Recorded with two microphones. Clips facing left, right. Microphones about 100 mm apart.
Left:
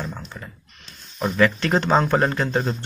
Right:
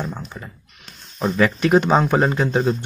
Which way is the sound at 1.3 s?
15° right (ahead or behind).